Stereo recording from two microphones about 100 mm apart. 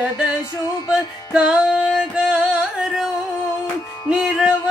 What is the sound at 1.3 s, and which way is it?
Music, 10° right (ahead or behind).